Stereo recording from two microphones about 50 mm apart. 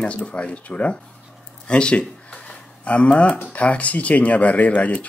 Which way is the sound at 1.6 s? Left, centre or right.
Left.